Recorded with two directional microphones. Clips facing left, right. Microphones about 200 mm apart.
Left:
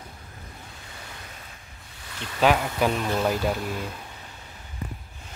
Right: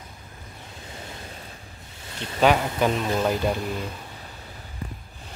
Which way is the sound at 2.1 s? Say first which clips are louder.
Right 3 dB; 25° right (ahead or behind).